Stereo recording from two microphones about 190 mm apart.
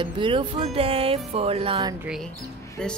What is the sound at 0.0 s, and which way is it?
Speech, 25° right (ahead or behind).